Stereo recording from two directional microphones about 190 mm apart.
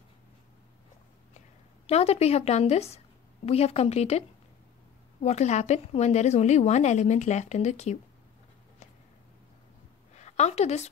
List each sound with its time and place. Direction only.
1.9 s a woman's voice: 35° left (ahead or behind)
5.2 s a woman's voice: 35° left (ahead or behind)
10.1 s a woman's voice: 35° left (ahead or behind)